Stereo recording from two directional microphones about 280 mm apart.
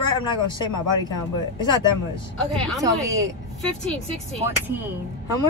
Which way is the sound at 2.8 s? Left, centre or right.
Centre.